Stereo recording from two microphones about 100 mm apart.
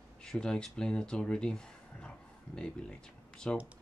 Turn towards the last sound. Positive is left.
turn(degrees=10)  # may be behind; listen again after turning